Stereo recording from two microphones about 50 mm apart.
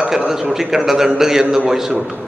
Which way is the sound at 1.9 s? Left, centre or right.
Right.